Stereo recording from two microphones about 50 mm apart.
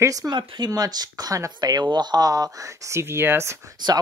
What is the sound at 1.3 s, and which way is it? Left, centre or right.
Speech, right.